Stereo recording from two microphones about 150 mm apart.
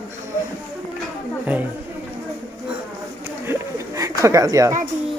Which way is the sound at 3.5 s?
20° right (ahead or behind).